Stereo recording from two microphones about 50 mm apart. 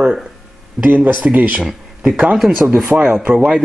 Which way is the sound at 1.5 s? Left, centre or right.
Centre.